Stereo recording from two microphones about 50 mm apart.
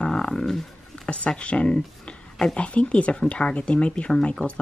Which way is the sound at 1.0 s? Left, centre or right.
Left.